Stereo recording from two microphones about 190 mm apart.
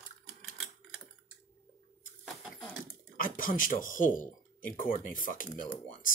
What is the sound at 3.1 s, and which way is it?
Speech, 45° left (ahead or behind).